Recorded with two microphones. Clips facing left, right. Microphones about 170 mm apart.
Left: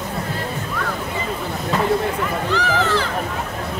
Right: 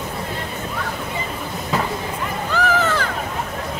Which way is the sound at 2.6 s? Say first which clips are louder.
Right 2 dB; 50° right (ahead or behind).